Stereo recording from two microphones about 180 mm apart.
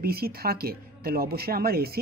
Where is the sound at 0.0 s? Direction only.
55° right (ahead or behind).